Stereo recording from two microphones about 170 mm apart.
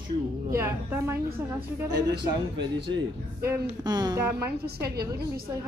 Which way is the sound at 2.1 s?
85° right.